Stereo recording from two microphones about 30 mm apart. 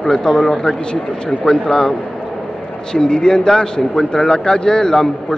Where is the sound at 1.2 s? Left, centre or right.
Left.